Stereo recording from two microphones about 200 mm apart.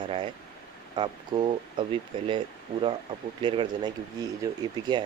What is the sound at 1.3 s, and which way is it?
Speech, 25° right (ahead or behind).